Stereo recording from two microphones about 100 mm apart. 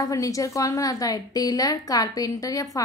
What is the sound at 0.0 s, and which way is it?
A woman's voice, 35° left (ahead or behind).